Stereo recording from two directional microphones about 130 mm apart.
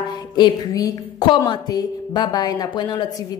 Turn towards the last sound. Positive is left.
turn(degrees=30)  # may be behind; listen again after turning